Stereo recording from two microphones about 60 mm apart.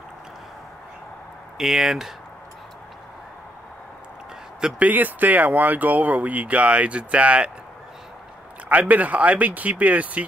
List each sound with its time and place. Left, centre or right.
1.6 s speech: centre
4.6 s speech: centre
4.8 s speech: right
8.6 s speech: right